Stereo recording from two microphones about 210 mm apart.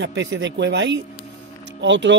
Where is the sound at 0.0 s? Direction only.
60° right (ahead or behind).